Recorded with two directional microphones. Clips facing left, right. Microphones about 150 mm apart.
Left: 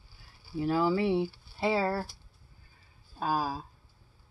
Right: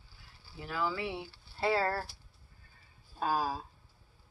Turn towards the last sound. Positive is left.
turn(degrees=0)  # may be behind; listen again after turning